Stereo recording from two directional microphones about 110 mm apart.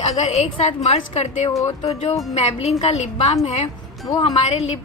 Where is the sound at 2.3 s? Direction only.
90° left.